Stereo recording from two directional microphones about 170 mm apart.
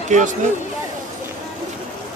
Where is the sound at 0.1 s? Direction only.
45° right (ahead or behind).